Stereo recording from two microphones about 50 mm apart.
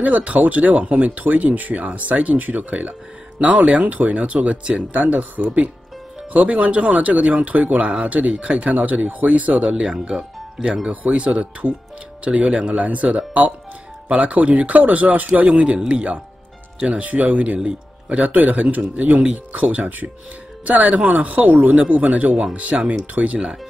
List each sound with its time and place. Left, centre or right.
0.0 s speech: right; by 10.9 s centre
10.9 s speech: right